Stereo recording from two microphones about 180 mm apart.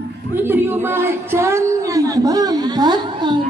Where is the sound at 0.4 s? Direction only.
10° right (ahead or behind).